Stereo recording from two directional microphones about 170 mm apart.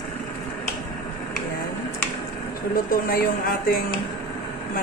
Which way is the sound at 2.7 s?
60° left (ahead or behind).